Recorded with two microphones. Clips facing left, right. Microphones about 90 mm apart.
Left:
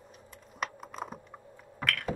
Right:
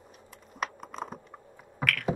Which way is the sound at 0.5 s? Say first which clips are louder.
Right 2 dB; centre (ahead or behind).